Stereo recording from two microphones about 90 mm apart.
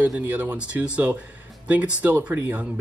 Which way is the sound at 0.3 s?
15° right (ahead or behind).